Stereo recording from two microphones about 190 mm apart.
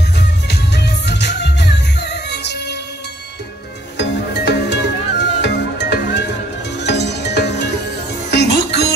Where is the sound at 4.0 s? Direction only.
65° left (ahead or behind).